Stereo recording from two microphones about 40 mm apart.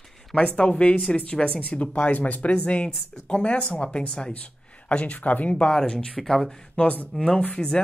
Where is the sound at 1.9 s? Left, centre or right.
Left.